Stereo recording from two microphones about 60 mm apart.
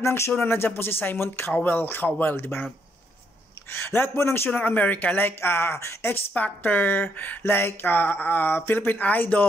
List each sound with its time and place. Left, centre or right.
0.0 s speech: left
3.7 s speech: left
4.6 s speech: left
6.1 s speech: left